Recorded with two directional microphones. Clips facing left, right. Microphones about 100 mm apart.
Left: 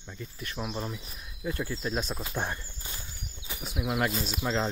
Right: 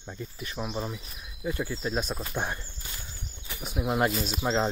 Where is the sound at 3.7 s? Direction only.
30° right (ahead or behind).